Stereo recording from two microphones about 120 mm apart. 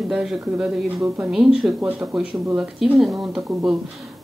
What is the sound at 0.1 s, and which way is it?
Speech, 5° right (ahead or behind).